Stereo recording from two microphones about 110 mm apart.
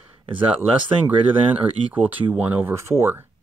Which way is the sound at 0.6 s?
15° right (ahead or behind).